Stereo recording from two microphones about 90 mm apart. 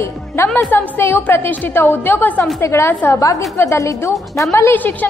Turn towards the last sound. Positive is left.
turn(degrees=20)  # may be behind; listen again after turning